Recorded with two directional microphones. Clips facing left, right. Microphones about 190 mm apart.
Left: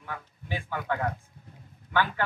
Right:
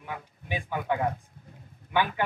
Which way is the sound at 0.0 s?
15° right (ahead or behind).